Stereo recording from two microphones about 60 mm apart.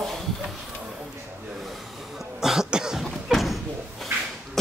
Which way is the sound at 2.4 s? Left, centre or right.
Centre.